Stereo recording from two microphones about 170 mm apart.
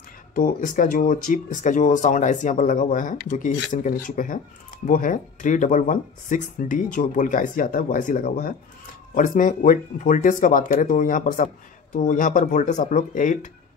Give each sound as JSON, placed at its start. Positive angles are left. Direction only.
{"t": 0.3, "sound": "speech", "side_deg": 55}